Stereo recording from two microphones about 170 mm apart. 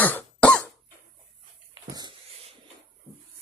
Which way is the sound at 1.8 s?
25° right (ahead or behind).